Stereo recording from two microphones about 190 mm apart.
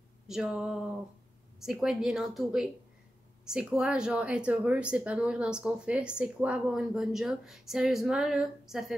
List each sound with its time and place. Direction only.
0.3 s a woman's voice: centre (ahead or behind)